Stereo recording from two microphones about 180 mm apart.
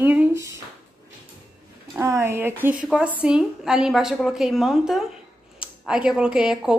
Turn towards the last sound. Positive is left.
turn(degrees=-5)  # may be behind; listen again after turning